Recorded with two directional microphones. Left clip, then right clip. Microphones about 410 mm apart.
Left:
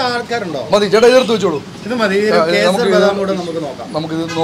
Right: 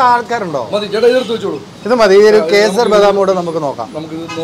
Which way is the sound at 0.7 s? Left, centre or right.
Left.